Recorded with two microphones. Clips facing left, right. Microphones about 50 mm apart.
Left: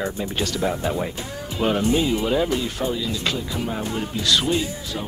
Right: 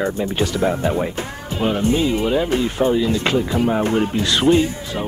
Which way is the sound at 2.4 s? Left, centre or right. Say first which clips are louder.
Right 6 dB; right.